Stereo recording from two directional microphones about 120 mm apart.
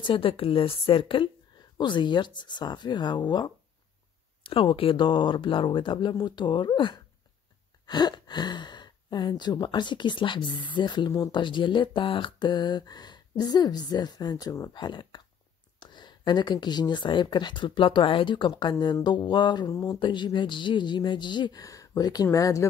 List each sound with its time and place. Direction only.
0.0 s a woman's voice: 45° left (ahead or behind)
4.4 s speech: 50° left (ahead or behind); by 14.8 s 30° left (ahead or behind)
14.8 s speech: 40° left (ahead or behind)
19.7 s speech: 25° left (ahead or behind)
20.0 s speech: 40° left (ahead or behind)